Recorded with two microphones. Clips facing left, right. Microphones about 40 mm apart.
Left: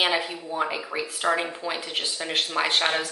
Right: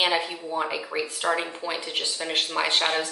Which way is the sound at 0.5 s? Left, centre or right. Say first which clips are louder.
Left 1 dB; centre.